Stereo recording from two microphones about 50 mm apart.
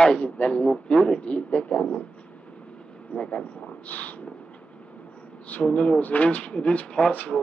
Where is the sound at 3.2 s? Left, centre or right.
Left.